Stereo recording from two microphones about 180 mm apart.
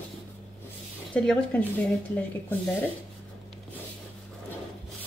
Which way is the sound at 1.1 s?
5° left (ahead or behind).